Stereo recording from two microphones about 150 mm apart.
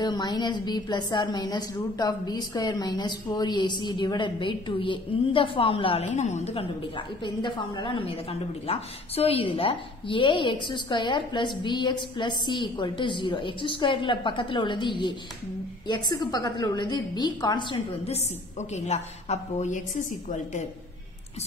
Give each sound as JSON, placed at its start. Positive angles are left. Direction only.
{"t": 0.0, "sound": "a woman's voice", "side_deg": 30}
{"t": 6.1, "sound": "a woman's voice", "side_deg": 50}
{"t": 18.0, "sound": "a woman's voice", "side_deg": 50}